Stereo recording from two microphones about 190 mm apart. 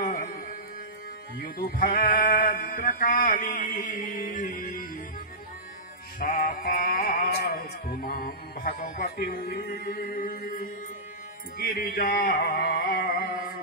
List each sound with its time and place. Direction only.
0.0 s music: 45° left (ahead or behind)
6.1 s music: 45° left (ahead or behind)